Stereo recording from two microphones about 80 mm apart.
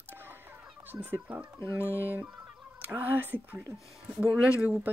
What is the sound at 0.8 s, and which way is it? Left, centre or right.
Speech, right.